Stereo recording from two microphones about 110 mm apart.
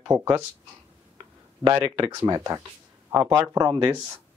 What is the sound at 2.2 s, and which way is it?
Speech, 30° right (ahead or behind).